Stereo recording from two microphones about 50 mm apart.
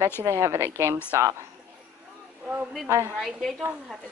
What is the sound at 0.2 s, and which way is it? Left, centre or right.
Speech, right.